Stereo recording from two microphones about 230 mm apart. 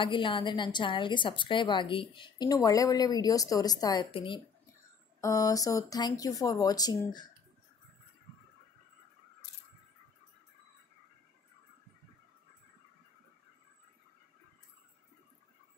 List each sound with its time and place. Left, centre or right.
0.0 s a woman's voice: left